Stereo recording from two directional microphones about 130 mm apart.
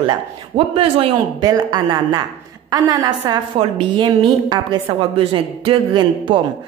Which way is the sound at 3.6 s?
40° right (ahead or behind).